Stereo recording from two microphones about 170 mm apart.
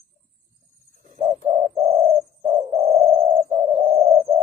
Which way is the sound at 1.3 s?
35° right (ahead or behind).